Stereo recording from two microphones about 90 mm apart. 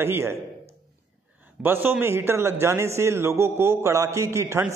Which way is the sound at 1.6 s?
25° right (ahead or behind).